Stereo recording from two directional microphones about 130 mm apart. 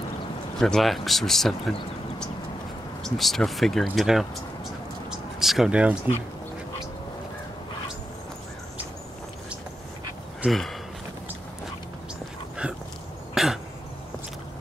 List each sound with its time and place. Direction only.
0.6 s speech: 5° left (ahead or behind)
5.1 s a sound: centre (ahead or behind)
10.4 s speech: centre (ahead or behind)
13.3 s cough: 5° right (ahead or behind)